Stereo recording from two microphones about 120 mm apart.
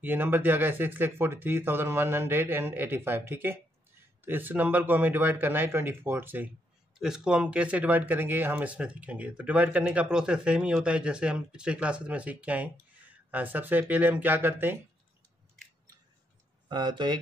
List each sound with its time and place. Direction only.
0.0 s speech: 15° right (ahead or behind)
7.0 s speech: 5° right (ahead or behind)
16.6 s speech: 40° right (ahead or behind)